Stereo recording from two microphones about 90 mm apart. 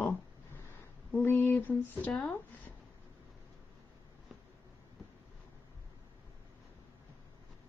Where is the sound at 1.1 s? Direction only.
25° left (ahead or behind).